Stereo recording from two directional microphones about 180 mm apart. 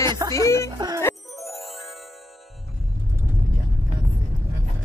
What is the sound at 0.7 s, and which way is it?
Speech, 20° right (ahead or behind).